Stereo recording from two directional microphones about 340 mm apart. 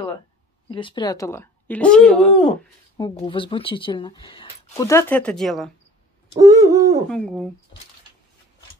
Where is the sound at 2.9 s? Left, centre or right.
Centre.